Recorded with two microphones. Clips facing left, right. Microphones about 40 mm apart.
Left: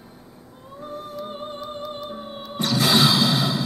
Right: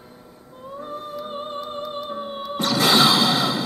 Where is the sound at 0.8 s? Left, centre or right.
Centre.